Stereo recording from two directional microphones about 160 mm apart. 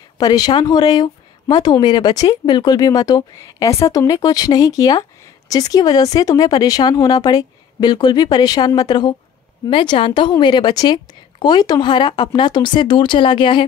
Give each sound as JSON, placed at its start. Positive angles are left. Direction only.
{"t": 0.2, "sound": "speech", "side_deg": 25}